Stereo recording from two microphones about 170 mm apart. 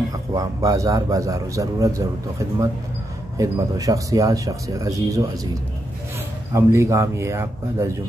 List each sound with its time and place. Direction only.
0.1 s speech: 20° right (ahead or behind)
3.3 s a man's voice: 20° right (ahead or behind)